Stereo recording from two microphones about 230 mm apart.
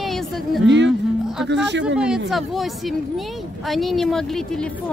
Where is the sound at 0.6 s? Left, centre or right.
Right.